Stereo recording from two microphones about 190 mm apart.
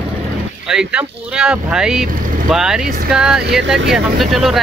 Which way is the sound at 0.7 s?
5° right (ahead or behind).